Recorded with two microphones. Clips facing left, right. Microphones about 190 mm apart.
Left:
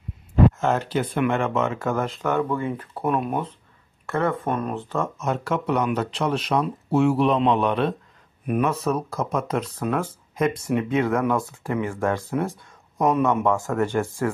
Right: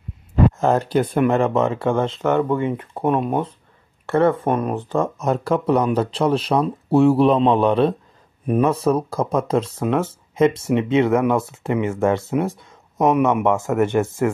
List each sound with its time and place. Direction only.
0.6 s speech: 35° right (ahead or behind); by 14.0 s 20° right (ahead or behind)